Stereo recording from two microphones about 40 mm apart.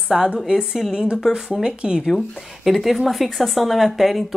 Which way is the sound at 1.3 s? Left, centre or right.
Centre.